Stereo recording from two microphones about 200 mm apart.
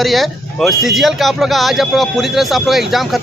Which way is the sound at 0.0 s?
Centre (ahead or behind).